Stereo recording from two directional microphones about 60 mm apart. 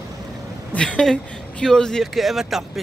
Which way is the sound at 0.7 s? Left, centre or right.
Centre.